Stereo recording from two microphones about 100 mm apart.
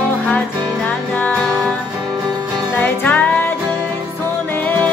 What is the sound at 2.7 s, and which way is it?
Music, 15° left (ahead or behind).